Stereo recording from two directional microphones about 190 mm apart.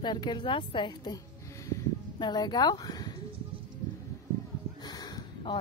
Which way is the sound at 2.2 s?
20° left (ahead or behind).